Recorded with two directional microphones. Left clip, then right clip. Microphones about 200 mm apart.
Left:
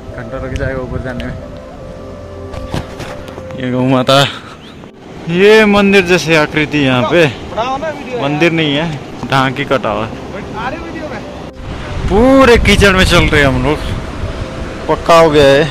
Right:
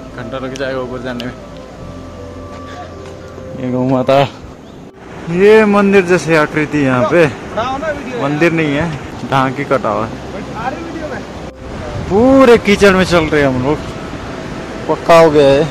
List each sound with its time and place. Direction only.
0.6 s a man's voice: centre (ahead or behind)
3.6 s a man's voice: centre (ahead or behind)
5.3 s a man's voice: centre (ahead or behind)
7.5 s a sound: 60° right (ahead or behind)
8.2 s a man's voice: centre (ahead or behind)
12.1 s a man's voice: centre (ahead or behind)
14.9 s a man's voice: 5° left (ahead or behind)